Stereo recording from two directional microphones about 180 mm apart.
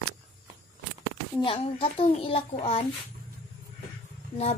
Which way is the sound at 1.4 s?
30° left (ahead or behind).